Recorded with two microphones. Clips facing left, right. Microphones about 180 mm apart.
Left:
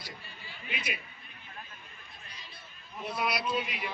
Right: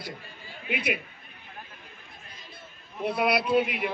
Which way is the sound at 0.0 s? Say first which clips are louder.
Right 7 dB; 60° right (ahead or behind).